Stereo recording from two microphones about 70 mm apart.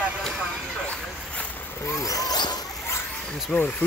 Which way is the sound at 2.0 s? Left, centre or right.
Left.